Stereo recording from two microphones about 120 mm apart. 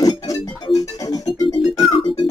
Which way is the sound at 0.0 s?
30° left (ahead or behind).